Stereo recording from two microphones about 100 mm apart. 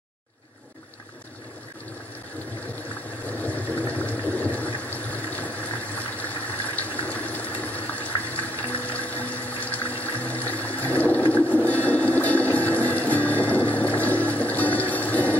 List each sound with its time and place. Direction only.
3.3 s vehicle: 15° left (ahead or behind)
4.3 s water: 15° left (ahead or behind)
6.1 s a sound: 15° left (ahead or behind)